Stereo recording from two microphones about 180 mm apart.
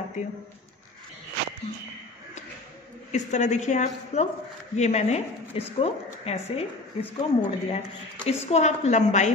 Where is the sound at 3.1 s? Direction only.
40° left (ahead or behind).